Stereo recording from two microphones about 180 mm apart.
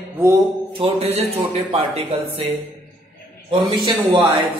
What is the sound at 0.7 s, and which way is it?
A man's voice, 35° right (ahead or behind).